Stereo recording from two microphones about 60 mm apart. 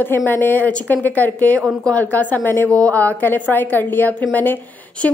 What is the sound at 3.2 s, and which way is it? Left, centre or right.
A woman's voice, left.